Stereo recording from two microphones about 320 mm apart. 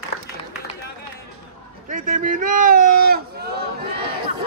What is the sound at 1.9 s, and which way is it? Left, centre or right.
Speech, right.